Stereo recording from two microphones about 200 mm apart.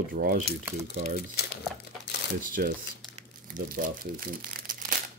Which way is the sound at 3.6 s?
45° right (ahead or behind).